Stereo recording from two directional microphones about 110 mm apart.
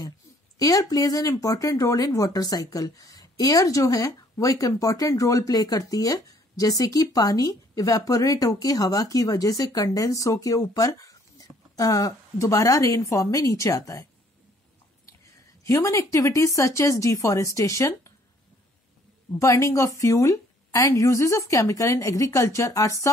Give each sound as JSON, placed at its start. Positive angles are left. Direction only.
{"t": 0.6, "sound": "speech", "side_deg": 35}
{"t": 15.6, "sound": "a woman's voice", "side_deg": 30}
{"t": 19.3, "sound": "a woman's voice", "side_deg": 30}